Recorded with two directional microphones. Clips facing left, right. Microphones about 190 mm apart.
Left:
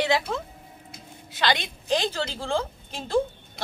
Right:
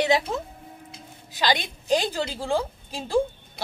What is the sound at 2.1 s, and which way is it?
A woman's voice, 10° right (ahead or behind).